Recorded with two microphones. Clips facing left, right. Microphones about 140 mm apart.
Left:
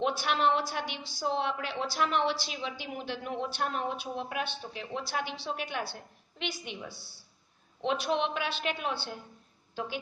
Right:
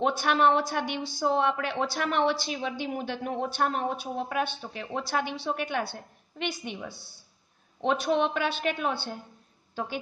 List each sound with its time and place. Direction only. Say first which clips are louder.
0.0 s a woman's voice: right 4 dB; 50° right (ahead or behind)